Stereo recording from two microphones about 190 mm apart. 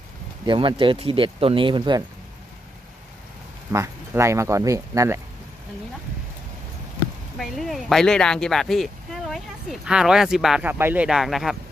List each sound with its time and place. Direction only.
0.5 s speech: 25° right (ahead or behind)
3.7 s speech: 15° right (ahead or behind)
7.3 s speech: centre (ahead or behind)